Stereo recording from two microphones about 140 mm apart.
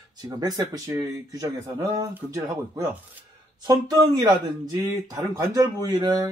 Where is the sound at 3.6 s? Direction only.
30° right (ahead or behind).